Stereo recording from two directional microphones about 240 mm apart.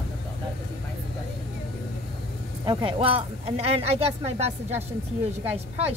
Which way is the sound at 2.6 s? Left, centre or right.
Centre.